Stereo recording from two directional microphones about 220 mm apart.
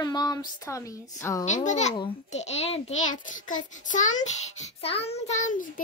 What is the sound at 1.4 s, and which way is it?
A child's voice, 35° left (ahead or behind).